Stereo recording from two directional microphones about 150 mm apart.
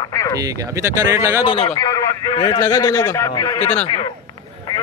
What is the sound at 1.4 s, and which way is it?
A man's voice, 35° left (ahead or behind).